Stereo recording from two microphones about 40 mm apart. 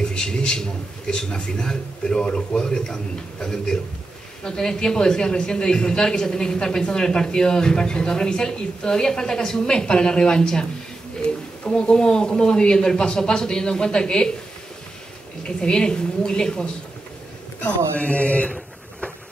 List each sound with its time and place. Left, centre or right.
0.0 s a man's voice: centre
15.4 s a man's voice: left
17.6 s speech: left